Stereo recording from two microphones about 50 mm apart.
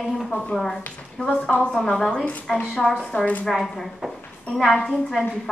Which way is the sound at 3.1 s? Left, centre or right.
Left.